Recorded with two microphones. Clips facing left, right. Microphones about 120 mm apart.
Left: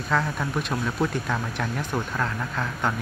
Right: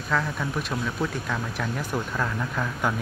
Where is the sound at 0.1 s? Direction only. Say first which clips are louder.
Left 1 dB; centre (ahead or behind).